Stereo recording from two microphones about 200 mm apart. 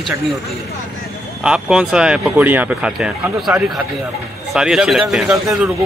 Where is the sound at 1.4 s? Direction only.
5° right (ahead or behind).